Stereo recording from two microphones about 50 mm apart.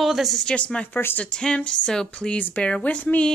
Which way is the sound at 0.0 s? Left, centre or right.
Centre.